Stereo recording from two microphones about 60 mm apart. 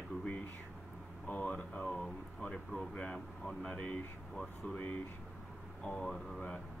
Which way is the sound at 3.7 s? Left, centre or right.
Left.